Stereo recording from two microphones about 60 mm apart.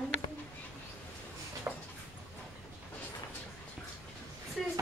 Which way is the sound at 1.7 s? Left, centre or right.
Right.